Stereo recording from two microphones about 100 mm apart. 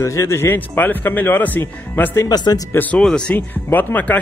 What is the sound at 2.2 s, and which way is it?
Speech, 40° left (ahead or behind).